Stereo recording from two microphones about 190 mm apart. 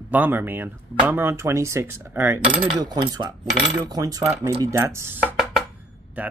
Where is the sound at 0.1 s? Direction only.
10° right (ahead or behind).